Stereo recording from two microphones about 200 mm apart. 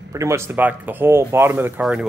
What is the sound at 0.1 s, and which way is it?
Speech, 15° right (ahead or behind).